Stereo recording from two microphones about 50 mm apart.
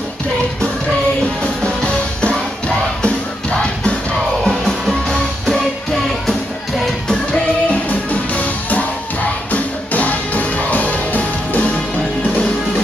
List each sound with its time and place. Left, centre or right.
3.0 s music: left
4.4 s music: centre
8.1 s music: left